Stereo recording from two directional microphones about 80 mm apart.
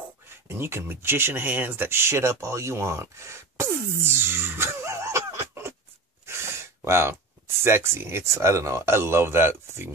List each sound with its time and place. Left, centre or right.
0.5 s speech: right